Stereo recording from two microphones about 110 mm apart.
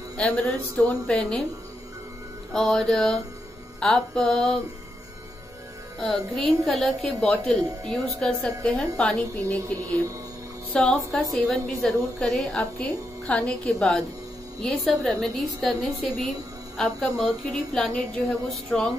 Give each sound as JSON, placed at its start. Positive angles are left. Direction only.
{"t": 0.4, "sound": "a woman's voice", "side_deg": 0}
{"t": 2.5, "sound": "a woman's voice", "side_deg": 5}
{"t": 5.9, "sound": "a woman's voice", "side_deg": 0}